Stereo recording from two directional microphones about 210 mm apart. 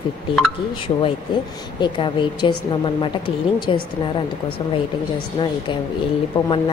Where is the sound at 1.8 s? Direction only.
20° left (ahead or behind).